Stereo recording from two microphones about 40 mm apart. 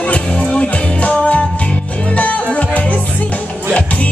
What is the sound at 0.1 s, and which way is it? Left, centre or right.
Music, left.